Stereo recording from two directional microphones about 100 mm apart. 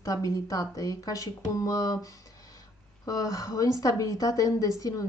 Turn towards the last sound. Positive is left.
turn(degrees=35)  # may be behind; listen again after turning